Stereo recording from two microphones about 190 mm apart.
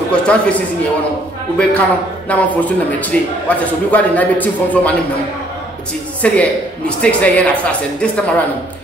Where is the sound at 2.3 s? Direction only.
10° left (ahead or behind).